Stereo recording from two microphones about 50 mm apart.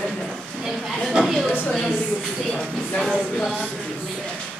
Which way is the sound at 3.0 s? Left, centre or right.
Centre.